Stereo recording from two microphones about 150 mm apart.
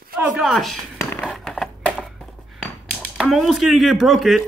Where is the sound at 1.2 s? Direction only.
Centre (ahead or behind).